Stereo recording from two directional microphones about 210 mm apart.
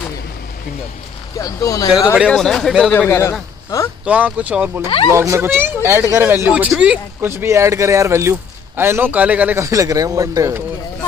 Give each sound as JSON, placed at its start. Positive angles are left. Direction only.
{"t": 1.4, "sound": "speech", "side_deg": 15}
{"t": 2.2, "sound": "a man's voice", "side_deg": 5}
{"t": 4.0, "sound": "speech", "side_deg": -5}
{"t": 4.8, "sound": "speech", "side_deg": 25}
{"t": 5.1, "sound": "speech", "side_deg": -15}